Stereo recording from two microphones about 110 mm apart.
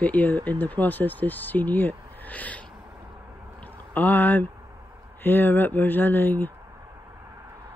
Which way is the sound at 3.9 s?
15° left (ahead or behind).